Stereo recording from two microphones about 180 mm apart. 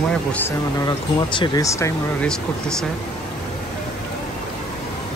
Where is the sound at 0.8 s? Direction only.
25° left (ahead or behind).